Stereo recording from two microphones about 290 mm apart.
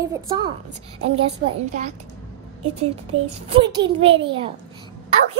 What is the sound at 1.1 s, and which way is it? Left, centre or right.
A woman's voice, right.